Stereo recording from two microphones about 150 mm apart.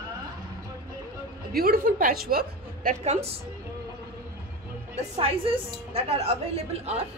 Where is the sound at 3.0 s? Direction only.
45° right (ahead or behind).